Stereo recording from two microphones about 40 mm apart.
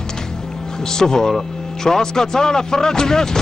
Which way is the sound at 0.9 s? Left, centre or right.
Centre.